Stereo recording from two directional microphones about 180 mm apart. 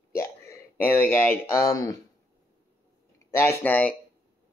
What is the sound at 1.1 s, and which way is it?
Speech, 10° left (ahead or behind).